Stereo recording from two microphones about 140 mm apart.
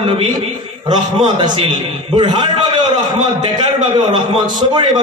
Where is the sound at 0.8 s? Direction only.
35° right (ahead or behind).